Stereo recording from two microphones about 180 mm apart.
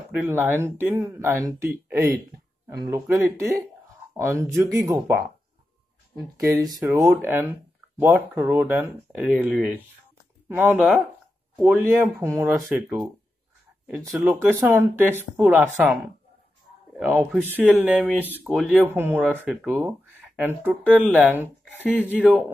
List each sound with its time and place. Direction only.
0.1 s speech: 10° right (ahead or behind)
6.3 s speech: 20° right (ahead or behind)
12.0 s speech: 15° right (ahead or behind)
12.5 s speech: centre (ahead or behind)
17.0 s speech: 10° right (ahead or behind)